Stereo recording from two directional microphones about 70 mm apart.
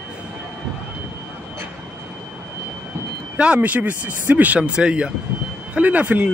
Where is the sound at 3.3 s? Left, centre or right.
Centre.